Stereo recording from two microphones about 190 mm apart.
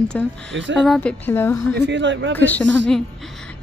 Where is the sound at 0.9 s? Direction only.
10° left (ahead or behind).